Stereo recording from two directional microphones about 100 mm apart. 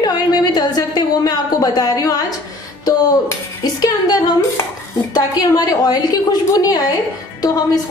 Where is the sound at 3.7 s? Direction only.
40° left (ahead or behind).